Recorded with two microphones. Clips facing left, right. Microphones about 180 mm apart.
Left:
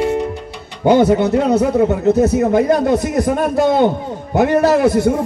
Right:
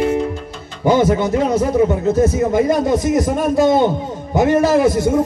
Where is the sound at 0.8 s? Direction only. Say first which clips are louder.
Left 3 dB; 65° left (ahead or behind).